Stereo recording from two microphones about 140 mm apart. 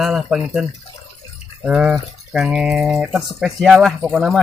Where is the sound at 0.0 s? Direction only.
5° right (ahead or behind).